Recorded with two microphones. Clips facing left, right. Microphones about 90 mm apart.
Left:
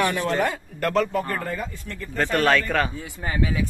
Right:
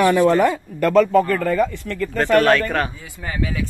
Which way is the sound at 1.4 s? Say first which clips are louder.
Right 11 dB; 90° right.